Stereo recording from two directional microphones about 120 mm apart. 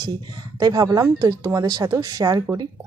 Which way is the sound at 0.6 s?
35° right (ahead or behind).